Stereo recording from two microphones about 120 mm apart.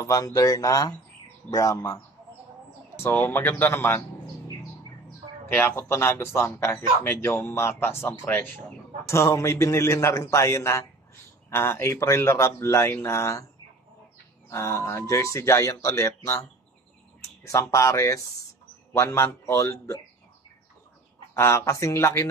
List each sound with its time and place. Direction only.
0.0 s a man's voice: 30° left (ahead or behind)
3.0 s speech: 20° left (ahead or behind)
5.5 s a man's voice: 20° left (ahead or behind)
14.5 s a man's voice: 20° left (ahead or behind)
17.5 s a man's voice: 25° left (ahead or behind)
21.4 s a man's voice: 25° left (ahead or behind)